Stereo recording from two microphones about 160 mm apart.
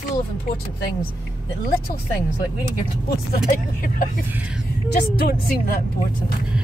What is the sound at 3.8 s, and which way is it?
Speech, 60° left (ahead or behind).